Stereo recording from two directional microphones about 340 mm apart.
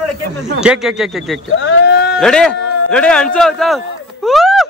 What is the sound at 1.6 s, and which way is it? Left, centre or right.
Sheep, left.